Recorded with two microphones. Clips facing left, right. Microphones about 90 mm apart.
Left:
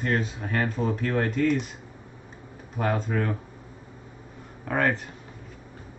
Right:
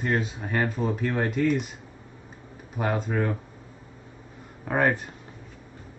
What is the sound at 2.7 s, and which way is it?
Speech, 5° right (ahead or behind).